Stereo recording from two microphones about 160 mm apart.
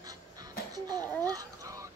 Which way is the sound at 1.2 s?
20° right (ahead or behind).